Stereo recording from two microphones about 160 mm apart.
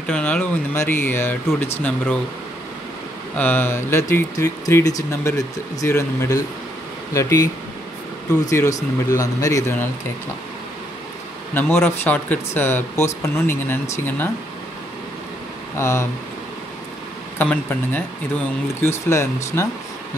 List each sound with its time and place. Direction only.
0.1 s speech: 10° left (ahead or behind)
3.3 s speech: 10° left (ahead or behind)
8.5 s speech: 20° left (ahead or behind)
11.5 s speech: 15° left (ahead or behind)
15.8 s speech: 15° left (ahead or behind)
17.4 s speech: 10° left (ahead or behind)